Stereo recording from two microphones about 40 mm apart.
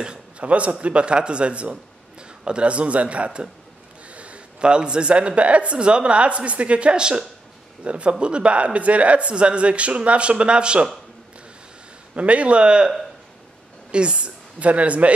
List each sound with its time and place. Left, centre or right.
0.0 s a sound: right
0.5 s a man's voice: right
12.2 s speech: right
13.9 s speech: right